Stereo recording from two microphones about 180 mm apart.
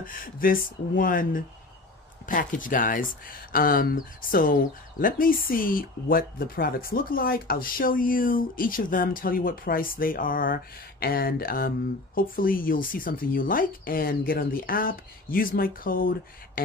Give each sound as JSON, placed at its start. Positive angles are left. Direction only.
{"t": 0.0, "sound": "speech", "side_deg": 50}